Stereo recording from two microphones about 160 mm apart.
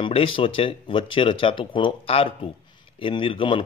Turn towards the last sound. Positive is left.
turn(degrees=35)  # may be behind; listen again after turning